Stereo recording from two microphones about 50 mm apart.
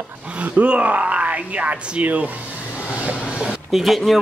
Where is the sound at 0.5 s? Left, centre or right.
Right.